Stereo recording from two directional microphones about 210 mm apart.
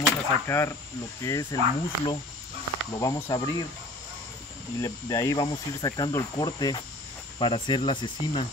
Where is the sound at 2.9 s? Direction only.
20° left (ahead or behind).